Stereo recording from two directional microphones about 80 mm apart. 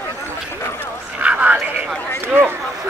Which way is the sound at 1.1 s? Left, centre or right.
Centre.